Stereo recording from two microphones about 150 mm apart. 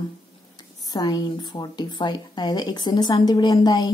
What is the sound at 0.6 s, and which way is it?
Speech, 25° left (ahead or behind).